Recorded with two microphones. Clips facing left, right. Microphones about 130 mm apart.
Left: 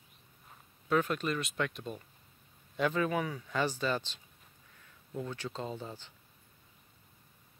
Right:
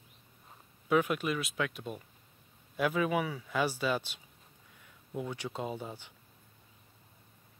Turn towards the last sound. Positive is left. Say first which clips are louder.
# right 2 dB
turn(degrees=-15)  # may be behind; listen again after turning